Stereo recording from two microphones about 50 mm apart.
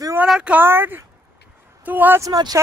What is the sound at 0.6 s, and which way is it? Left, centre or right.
Speech, right.